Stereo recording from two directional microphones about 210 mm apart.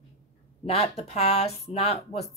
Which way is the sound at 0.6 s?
30° left (ahead or behind).